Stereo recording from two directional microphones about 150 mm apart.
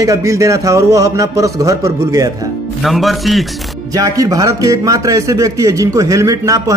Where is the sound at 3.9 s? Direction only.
25° right (ahead or behind).